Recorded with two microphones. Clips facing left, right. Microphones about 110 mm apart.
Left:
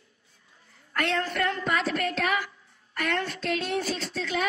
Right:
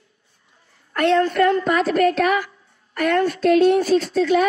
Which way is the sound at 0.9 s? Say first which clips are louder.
Right 11 dB; 35° right (ahead or behind).